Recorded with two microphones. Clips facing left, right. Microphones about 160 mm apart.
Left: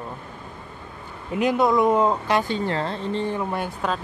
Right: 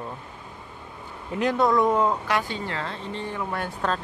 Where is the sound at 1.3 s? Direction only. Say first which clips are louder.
Left 2 dB; 15° left (ahead or behind).